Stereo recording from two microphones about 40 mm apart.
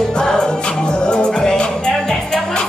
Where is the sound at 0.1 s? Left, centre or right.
Centre.